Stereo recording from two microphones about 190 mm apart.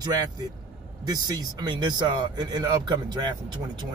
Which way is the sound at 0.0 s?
20° right (ahead or behind).